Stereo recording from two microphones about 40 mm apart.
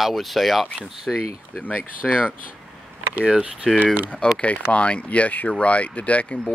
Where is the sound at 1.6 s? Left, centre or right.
Left.